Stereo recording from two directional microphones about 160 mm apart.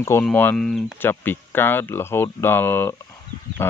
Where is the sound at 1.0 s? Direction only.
15° left (ahead or behind).